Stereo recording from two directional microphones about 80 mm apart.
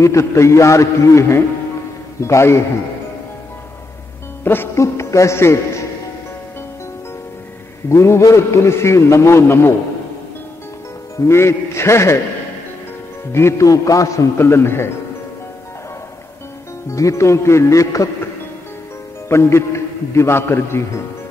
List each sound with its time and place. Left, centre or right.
0.0 s a man's voice: left
4.7 s a man's voice: left
7.9 s a man's voice: left
11.1 s a man's voice: left
13.3 s a man's voice: left
16.9 s a man's voice: left
19.2 s a man's voice: left